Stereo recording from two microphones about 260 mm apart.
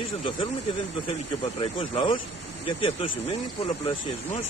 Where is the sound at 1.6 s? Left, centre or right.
Left.